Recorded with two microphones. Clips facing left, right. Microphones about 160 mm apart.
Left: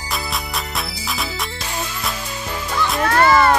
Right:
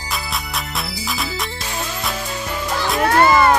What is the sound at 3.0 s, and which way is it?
Music, 20° right (ahead or behind).